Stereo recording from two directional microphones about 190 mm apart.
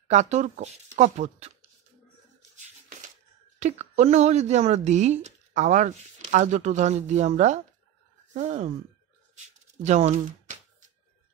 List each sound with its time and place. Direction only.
0.1 s speech: 40° right (ahead or behind)
3.5 s speech: 35° right (ahead or behind)
9.8 s speech: 40° right (ahead or behind)